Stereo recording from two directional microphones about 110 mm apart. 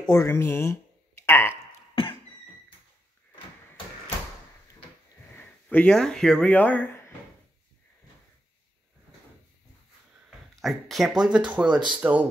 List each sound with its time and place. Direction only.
0.1 s speech: 25° left (ahead or behind)
1.2 s a sound: 20° left (ahead or behind)
5.3 s speech: 15° left (ahead or behind)
10.6 s speech: centre (ahead or behind)